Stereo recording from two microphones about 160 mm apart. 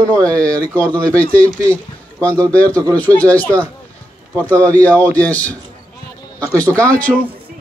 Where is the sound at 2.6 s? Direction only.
20° right (ahead or behind).